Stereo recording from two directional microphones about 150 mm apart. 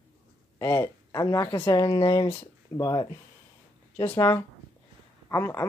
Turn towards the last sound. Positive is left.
turn(degrees=20)  # may be behind; listen again after turning